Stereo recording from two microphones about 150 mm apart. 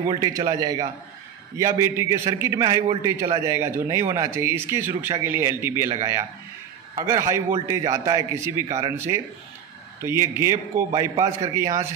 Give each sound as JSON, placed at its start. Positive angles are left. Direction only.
{"t": 0.2, "sound": "a man's voice", "side_deg": -25}